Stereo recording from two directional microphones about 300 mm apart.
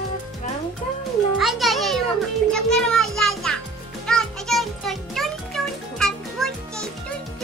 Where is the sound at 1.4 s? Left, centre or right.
Centre.